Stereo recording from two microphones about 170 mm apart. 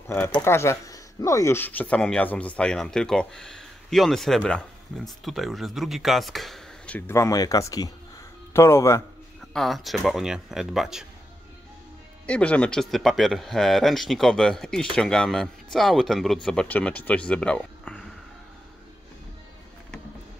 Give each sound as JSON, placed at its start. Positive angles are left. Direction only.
{"t": 0.4, "sound": "speech", "side_deg": 15}
{"t": 9.5, "sound": "speech", "side_deg": 0}
{"t": 12.3, "sound": "speech", "side_deg": 5}